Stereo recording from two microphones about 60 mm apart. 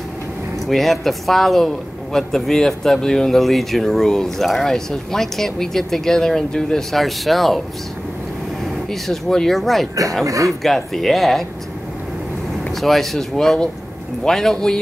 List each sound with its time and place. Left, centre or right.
0.7 s speech: centre
9.0 s speech: centre
10.2 s speech: right
10.6 s speech: centre
12.8 s speech: centre